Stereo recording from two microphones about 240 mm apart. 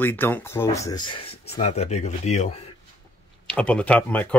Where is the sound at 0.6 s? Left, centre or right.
Centre.